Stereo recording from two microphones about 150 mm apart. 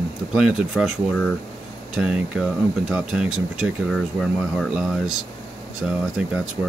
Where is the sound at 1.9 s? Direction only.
5° right (ahead or behind).